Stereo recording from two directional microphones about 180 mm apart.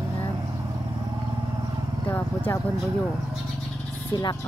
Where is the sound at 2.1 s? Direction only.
10° left (ahead or behind).